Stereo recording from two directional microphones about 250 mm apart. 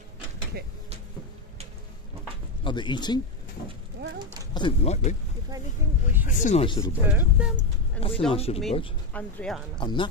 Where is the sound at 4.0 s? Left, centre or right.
Right.